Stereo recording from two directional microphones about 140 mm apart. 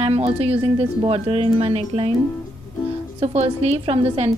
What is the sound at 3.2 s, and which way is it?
Speech, 45° right (ahead or behind).